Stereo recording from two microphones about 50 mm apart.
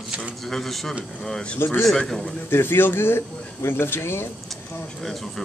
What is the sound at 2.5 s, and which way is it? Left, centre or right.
A man's voice, left.